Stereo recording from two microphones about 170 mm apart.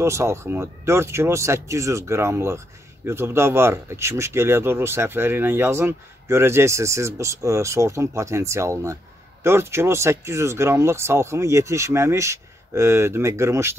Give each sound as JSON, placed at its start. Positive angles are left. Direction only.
{"t": 0.0, "sound": "speech", "side_deg": -15}